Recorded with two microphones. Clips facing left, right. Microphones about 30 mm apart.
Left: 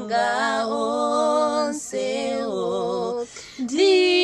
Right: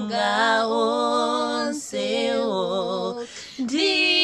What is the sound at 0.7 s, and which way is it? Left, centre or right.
Music, right.